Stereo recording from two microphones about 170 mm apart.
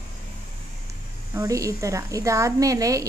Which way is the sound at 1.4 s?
20° right (ahead or behind).